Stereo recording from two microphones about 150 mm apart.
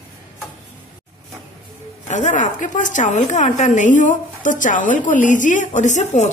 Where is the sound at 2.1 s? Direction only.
50° left (ahead or behind).